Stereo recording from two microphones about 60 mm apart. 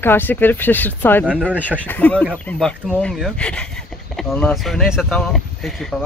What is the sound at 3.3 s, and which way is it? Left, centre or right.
Speech, centre.